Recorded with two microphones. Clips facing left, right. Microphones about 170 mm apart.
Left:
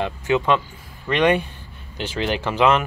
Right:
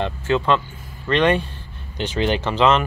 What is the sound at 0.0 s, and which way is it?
Speech, 10° left (ahead or behind).